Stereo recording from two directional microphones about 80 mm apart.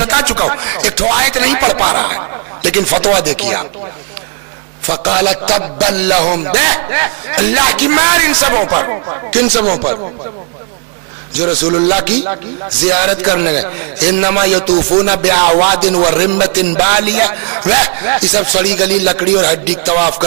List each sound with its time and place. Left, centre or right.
0.0 s speech: centre
4.8 s a man's voice: centre
9.3 s a man's voice: centre
11.3 s a man's voice: centre